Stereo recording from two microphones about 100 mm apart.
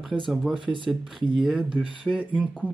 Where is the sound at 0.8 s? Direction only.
Centre (ahead or behind).